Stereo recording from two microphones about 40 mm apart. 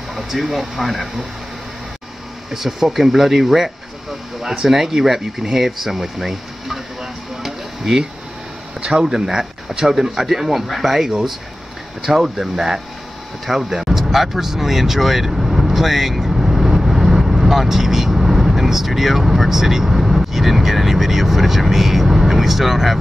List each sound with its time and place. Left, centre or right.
0.1 s speech: centre
2.5 s speech: centre
9.0 s speech: centre
12.1 s speech: centre